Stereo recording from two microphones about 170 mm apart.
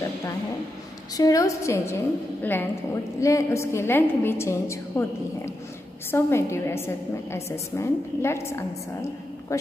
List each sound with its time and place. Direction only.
1.1 s a woman's voice: 20° left (ahead or behind)